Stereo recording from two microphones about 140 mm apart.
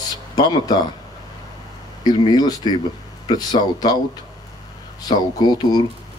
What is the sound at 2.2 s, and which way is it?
A man's voice, 30° left (ahead or behind).